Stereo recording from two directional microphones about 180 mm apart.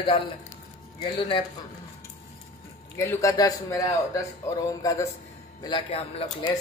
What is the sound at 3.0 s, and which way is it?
A man's voice, 15° left (ahead or behind).